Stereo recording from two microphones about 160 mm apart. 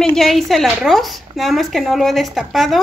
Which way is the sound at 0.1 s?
Centre (ahead or behind).